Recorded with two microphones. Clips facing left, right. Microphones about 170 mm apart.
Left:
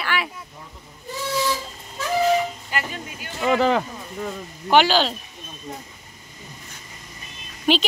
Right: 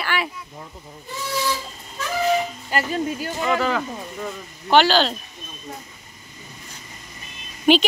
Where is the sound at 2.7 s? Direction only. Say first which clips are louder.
Right 12 dB; 35° right (ahead or behind).